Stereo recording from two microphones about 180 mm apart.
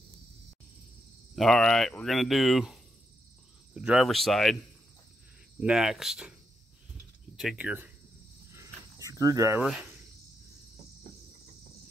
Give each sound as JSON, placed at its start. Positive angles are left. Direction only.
{"t": 1.3, "sound": "speech", "side_deg": 0}
{"t": 5.6, "sound": "speech", "side_deg": -5}
{"t": 7.3, "sound": "speech", "side_deg": -5}
{"t": 8.5, "sound": "cricket", "side_deg": -15}
{"t": 9.6, "sound": "speech", "side_deg": -5}